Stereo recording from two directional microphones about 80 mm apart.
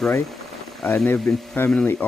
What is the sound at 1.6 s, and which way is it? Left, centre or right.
Speech, left.